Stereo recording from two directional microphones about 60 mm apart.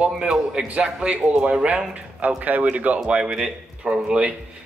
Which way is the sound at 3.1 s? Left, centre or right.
Centre.